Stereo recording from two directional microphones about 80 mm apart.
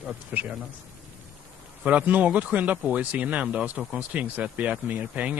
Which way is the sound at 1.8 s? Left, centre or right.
Centre.